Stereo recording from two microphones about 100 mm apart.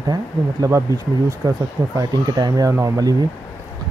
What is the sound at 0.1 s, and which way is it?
Speech, 35° right (ahead or behind).